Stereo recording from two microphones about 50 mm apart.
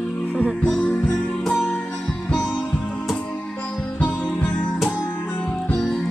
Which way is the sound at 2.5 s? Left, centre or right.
Left.